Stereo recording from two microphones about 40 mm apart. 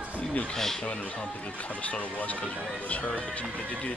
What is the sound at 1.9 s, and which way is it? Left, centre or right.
Speech, left.